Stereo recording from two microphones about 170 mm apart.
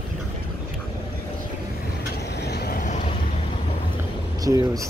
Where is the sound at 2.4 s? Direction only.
75° left (ahead or behind); by 3.0 s 50° left (ahead or behind).